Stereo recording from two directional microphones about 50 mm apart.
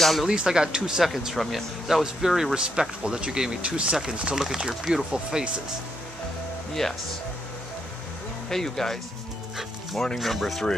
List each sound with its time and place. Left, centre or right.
0.0 s speech: centre
0.3 s speech: centre
6.7 s speech: centre
8.5 s speech: centre